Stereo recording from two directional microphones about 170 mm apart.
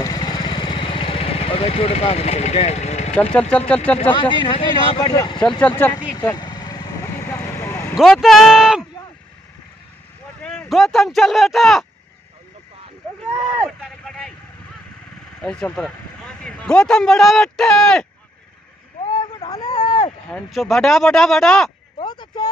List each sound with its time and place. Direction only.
0.0 s vehicle: 25° left (ahead or behind); by 3.2 s 40° left (ahead or behind)
3.2 s speech: 10° left (ahead or behind)
4.1 s speech: 30° left (ahead or behind)
5.6 s speech: 10° left (ahead or behind)
6.3 s vehicle: 25° left (ahead or behind)
7.9 s speech: centre (ahead or behind)
10.4 s speech: 5° left (ahead or behind)
13.7 s vehicle: 5° left (ahead or behind)
15.4 s a man's voice: 5° left (ahead or behind)
19.1 s vehicle: 20° left (ahead or behind)
20.2 s speech: 5° left (ahead or behind)
21.9 s a sound: 25° left (ahead or behind)